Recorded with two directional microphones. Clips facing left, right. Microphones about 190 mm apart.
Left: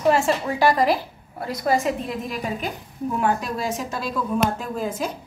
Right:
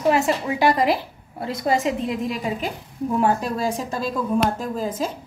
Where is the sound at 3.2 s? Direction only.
35° right (ahead or behind).